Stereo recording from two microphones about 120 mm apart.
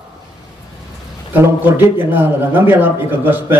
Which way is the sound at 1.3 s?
15° right (ahead or behind).